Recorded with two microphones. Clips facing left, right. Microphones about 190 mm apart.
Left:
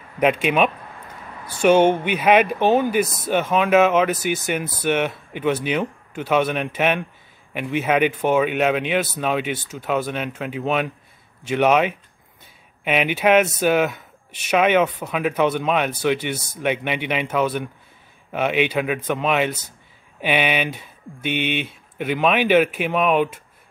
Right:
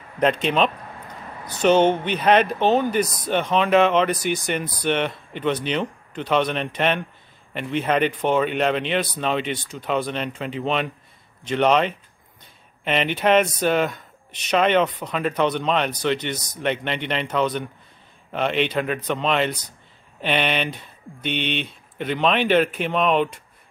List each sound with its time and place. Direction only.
0.2 s speech: 10° left (ahead or behind)